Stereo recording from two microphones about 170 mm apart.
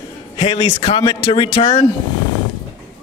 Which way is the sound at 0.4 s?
35° left (ahead or behind).